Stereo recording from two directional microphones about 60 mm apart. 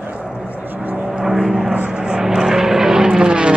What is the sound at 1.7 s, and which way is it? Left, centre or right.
Vehicle, centre.